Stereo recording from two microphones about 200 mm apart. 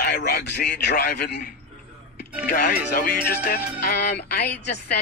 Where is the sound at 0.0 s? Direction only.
55° left (ahead or behind).